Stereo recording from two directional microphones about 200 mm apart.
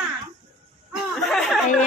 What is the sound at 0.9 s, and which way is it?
Chuckle, centre (ahead or behind).